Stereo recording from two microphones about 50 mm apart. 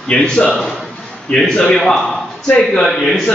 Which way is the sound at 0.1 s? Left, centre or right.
Centre.